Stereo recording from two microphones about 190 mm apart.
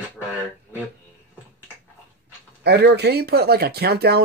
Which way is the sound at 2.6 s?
65° right (ahead or behind).